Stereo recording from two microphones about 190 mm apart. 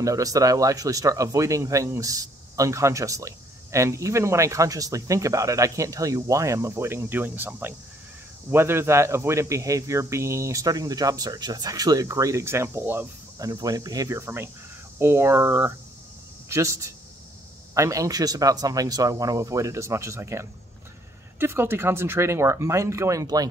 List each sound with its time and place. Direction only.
0.0 s speech: 15° right (ahead or behind)